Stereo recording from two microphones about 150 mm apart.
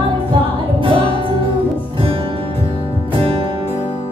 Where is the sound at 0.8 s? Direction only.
35° right (ahead or behind).